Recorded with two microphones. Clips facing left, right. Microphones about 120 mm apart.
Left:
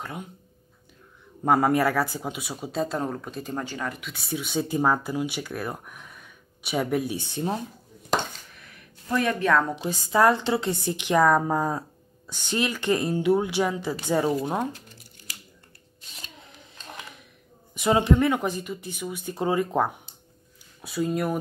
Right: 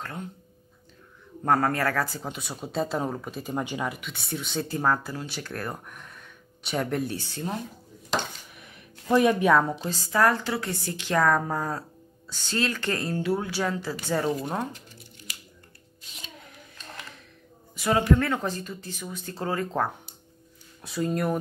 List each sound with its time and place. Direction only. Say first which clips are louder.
0.0 s speech: even; 15° left (ahead or behind)
1.4 s speech: left 3 dB; 10° left (ahead or behind); by 3.5 s 5° right (ahead or behind)
3.5 s speech: right 3 dB; 15° right (ahead or behind)
4.0 s speech: left 2 dB; centre (ahead or behind); by 7.5 s 20° left (ahead or behind)
8.5 s a sound: right 2 dB; 20° right (ahead or behind)
9.1 s speech: right 3 dB; 15° right (ahead or behind)
9.8 s speech: left 3 dB; 15° left (ahead or behind)
16.7 s a sound: left 2 dB; 15° left (ahead or behind)
17.7 s speech: left 2 dB; 20° left (ahead or behind)
20.8 s speech: left 1 dB; 5° left (ahead or behind)